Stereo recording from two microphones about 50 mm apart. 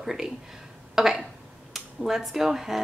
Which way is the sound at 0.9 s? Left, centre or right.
Centre.